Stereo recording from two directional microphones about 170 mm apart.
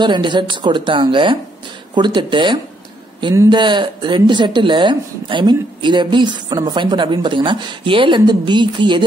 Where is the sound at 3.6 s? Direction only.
25° right (ahead or behind).